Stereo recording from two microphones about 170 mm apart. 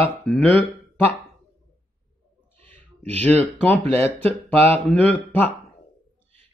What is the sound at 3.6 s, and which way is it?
Speech, 5° left (ahead or behind).